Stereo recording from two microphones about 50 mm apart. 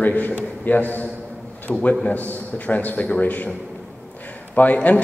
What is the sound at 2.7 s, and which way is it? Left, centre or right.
Speech, left.